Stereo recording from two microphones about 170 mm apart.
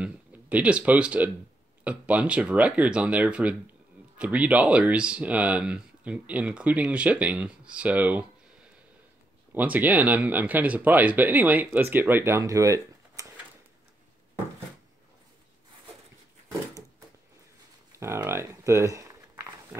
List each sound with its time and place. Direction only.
0.0 s speech: 10° right (ahead or behind)
9.5 s speech: 10° right (ahead or behind)
17.9 s a sound: 15° right (ahead or behind)